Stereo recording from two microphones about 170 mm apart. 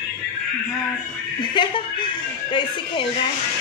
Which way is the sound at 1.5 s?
30° left (ahead or behind).